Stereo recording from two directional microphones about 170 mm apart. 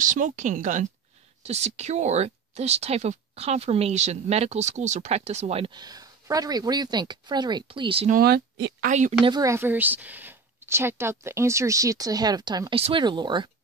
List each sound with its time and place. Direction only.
0.0 s speech: 50° right (ahead or behind); by 8.1 s 30° right (ahead or behind)
8.1 s speech: 65° right (ahead or behind)
8.8 s speech: 45° right (ahead or behind)
9.2 s a woman's voice: 20° right (ahead or behind)